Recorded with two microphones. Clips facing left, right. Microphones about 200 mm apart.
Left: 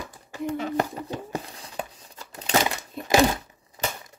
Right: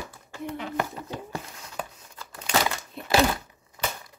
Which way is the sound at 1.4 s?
35° left (ahead or behind).